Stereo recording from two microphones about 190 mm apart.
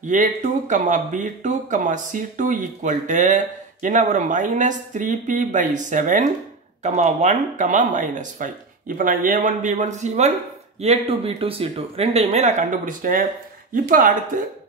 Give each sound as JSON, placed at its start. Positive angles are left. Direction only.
{"t": 0.0, "sound": "speech", "side_deg": -40}